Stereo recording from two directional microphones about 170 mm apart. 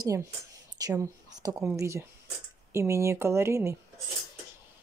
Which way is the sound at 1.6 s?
15° right (ahead or behind).